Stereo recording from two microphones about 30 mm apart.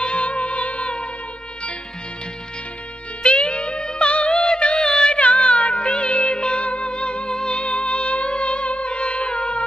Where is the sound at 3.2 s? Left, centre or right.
Left.